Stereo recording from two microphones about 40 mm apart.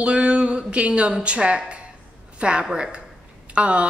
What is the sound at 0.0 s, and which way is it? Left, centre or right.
A man's voice, right.